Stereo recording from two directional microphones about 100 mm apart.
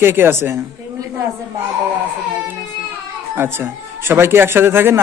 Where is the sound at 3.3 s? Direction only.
25° right (ahead or behind).